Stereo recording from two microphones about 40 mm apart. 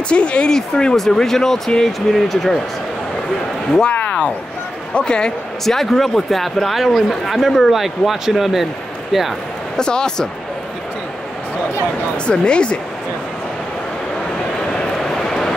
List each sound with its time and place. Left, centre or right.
0.1 s a man's voice: left; by 2.6 s centre
3.9 s a sound: left
4.9 s speech: left
5.7 s a man's voice: centre
9.8 s speech: centre
12.3 s speech: left
15.0 s vehicle: centre